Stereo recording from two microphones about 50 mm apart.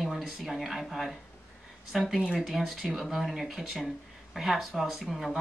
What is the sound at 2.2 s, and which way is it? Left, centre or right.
Speech, centre.